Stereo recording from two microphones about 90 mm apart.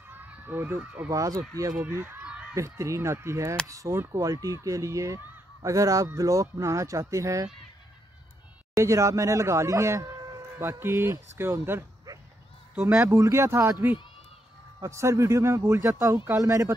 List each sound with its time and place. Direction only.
0.5 s speech: 25° right (ahead or behind)
1.1 s speech: 40° right (ahead or behind)
1.9 s speech: 20° right (ahead or behind)
2.5 s speech: 35° right (ahead or behind)
8.7 s speech: 35° right (ahead or behind)
12.1 s a sound: 40° right (ahead or behind)
12.8 s speech: 30° right (ahead or behind)